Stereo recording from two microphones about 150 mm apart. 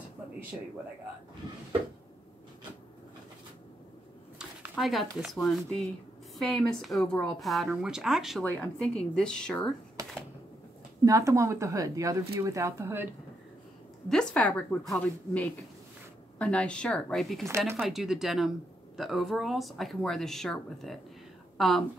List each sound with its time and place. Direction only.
4.4 s a woman's voice: 5° right (ahead or behind)
10.0 s a sound: 20° right (ahead or behind)
11.1 s speech: 20° right (ahead or behind)
14.0 s a woman's voice: 5° left (ahead or behind)